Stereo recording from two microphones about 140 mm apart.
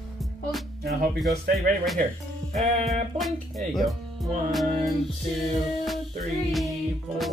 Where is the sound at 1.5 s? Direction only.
Centre (ahead or behind).